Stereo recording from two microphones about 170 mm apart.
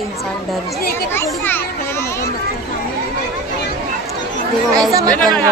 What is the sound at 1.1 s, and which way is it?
Children playing, 15° left (ahead or behind).